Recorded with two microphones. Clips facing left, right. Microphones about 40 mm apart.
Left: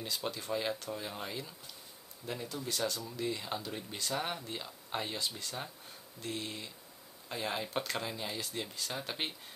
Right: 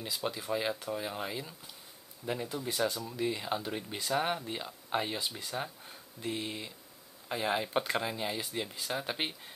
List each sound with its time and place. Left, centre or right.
0.0 s speech: centre